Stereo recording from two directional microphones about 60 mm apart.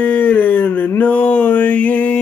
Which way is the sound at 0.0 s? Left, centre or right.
Left.